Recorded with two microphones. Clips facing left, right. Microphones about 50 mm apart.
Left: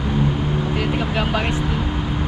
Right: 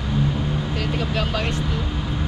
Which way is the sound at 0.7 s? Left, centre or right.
Centre.